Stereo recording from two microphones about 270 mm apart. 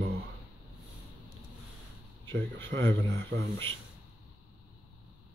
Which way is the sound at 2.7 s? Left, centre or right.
Right.